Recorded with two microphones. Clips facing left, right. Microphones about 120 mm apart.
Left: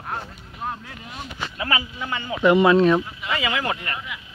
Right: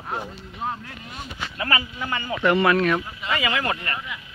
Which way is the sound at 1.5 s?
10° left (ahead or behind).